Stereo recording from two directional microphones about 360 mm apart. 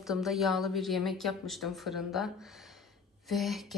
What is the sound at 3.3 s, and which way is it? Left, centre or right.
Speech, centre.